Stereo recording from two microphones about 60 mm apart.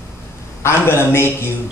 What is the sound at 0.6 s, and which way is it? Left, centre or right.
Speech, left.